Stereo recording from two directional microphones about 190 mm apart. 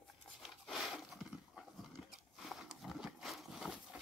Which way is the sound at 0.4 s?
Centre (ahead or behind).